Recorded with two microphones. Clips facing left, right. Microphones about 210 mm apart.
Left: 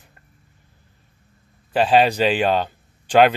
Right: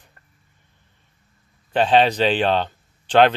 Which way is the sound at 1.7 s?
5° left (ahead or behind).